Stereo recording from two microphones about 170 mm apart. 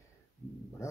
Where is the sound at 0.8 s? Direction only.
15° left (ahead or behind).